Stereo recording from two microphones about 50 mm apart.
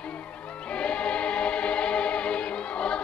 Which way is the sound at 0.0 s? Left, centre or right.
Left.